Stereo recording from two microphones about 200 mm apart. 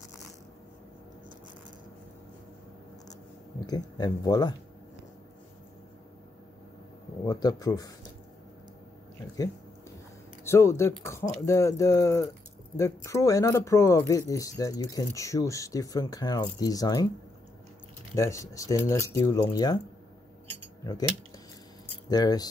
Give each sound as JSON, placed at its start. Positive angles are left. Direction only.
{"t": 3.6, "sound": "speech", "side_deg": 20}
{"t": 7.2, "sound": "speech", "side_deg": 20}
{"t": 10.4, "sound": "speech", "side_deg": 15}
{"t": 18.1, "sound": "speech", "side_deg": 15}
{"t": 22.1, "sound": "speech", "side_deg": 20}